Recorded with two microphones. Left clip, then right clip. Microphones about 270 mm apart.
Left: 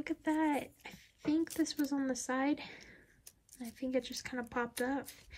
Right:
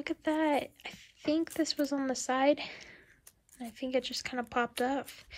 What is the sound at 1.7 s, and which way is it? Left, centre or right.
Speech, left.